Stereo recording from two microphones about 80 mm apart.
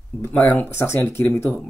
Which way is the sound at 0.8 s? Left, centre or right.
Left.